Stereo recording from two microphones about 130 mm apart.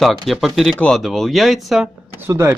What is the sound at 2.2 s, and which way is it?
Speech, 20° right (ahead or behind).